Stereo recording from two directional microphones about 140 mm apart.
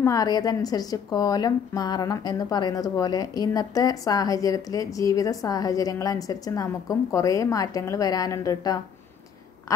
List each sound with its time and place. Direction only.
0.0 s a woman's voice: 25° left (ahead or behind)